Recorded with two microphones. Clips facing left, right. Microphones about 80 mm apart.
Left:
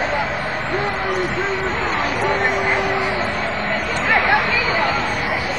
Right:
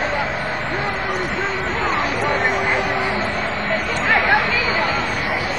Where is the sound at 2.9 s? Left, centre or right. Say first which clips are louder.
Left 1 dB; centre.